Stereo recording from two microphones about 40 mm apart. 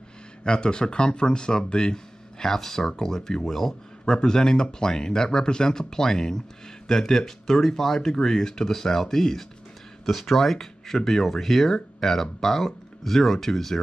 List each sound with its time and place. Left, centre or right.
0.4 s speech: left